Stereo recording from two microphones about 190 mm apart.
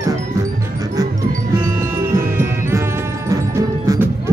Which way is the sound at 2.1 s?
15° right (ahead or behind).